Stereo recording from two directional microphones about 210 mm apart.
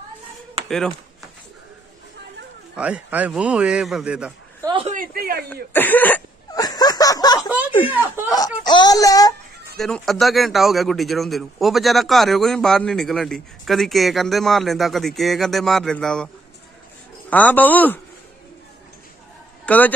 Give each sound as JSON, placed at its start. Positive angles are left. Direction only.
{"t": 0.7, "sound": "speech", "side_deg": 0}
{"t": 2.7, "sound": "a man's voice", "side_deg": -5}
{"t": 4.6, "sound": "speech", "side_deg": -25}
{"t": 4.9, "sound": "speech", "side_deg": -45}
{"t": 5.5, "sound": "a sound", "side_deg": 10}
{"t": 8.3, "sound": "speech", "side_deg": 20}
{"t": 9.8, "sound": "a man's voice", "side_deg": 0}
{"t": 17.3, "sound": "speech", "side_deg": 10}
{"t": 19.6, "sound": "a man's voice", "side_deg": 5}